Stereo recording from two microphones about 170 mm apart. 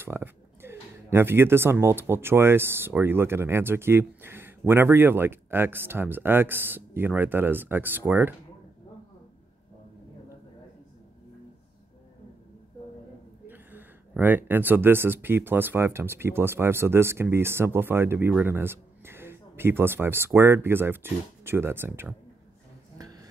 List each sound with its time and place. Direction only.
0.0 s speech: 15° right (ahead or behind)
13.5 s speech: 10° right (ahead or behind)
22.9 s a sound: 20° right (ahead or behind)